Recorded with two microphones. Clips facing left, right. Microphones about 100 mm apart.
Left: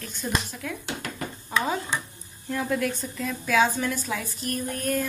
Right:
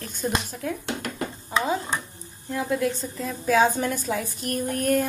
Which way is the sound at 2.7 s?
25° right (ahead or behind).